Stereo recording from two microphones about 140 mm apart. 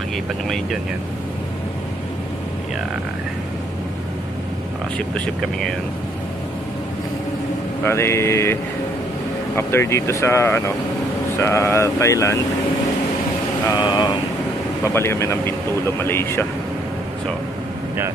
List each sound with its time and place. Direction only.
4.9 s speech: 5° left (ahead or behind)
7.8 s speech: 20° left (ahead or behind)
9.6 s speech: 20° left (ahead or behind)
13.7 s speech: 35° left (ahead or behind)
14.9 s speech: 20° left (ahead or behind)